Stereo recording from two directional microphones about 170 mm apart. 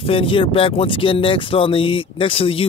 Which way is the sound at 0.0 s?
35° left (ahead or behind).